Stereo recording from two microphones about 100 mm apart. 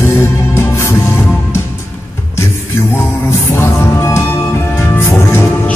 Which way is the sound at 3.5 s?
30° left (ahead or behind).